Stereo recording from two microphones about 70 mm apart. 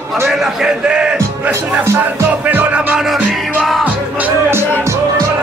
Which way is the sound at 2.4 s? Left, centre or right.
Right.